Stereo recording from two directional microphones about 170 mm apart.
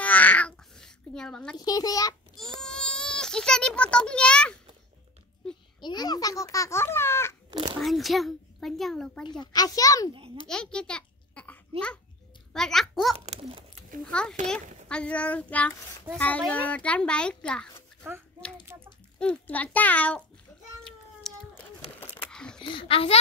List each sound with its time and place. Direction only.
0.0 s babbling: 10° left (ahead or behind)
1.6 s a child's voice: 20° left (ahead or behind)
2.6 s a child's voice: 5° left (ahead or behind)
5.8 s a child's voice: 25° left (ahead or behind)
7.8 s a child's voice: centre (ahead or behind)
9.2 s a child's voice: 25° left (ahead or behind)
10.5 s a child's voice: 5° left (ahead or behind)
12.5 s a child's voice: centre (ahead or behind)
13.2 s a child's voice: 35° right (ahead or behind)
14.5 s a child's voice: 5° left (ahead or behind)
18.7 s speech: 20° right (ahead or behind)
19.1 s a child's voice: 5° left (ahead or behind)
21.2 s a sound: 5° left (ahead or behind)
22.6 s a child's voice: 30° left (ahead or behind)